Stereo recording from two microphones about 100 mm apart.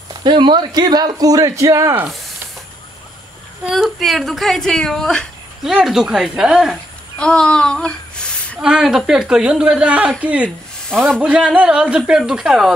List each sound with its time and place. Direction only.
0.1 s speech: 50° right (ahead or behind); by 2.0 s 35° right (ahead or behind)
3.6 s speech: centre (ahead or behind)
5.7 s speech: 5° right (ahead or behind)
6.7 s a sound: 5° left (ahead or behind)
8.5 s a woman's voice: 10° right (ahead or behind)
10.9 s speech: 5° left (ahead or behind)
11.1 s a woman's voice: 10° right (ahead or behind)